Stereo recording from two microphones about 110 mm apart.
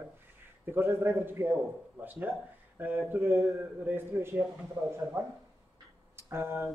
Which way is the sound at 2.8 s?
20° right (ahead or behind).